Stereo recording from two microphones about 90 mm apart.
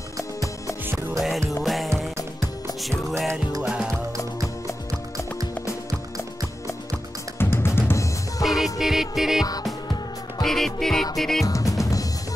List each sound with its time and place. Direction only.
0.2 s music: 35° left (ahead or behind)
0.9 s music: centre (ahead or behind)
7.3 s music: 25° left (ahead or behind)
8.5 s music: centre (ahead or behind)
11.4 s drum: 40° left (ahead or behind)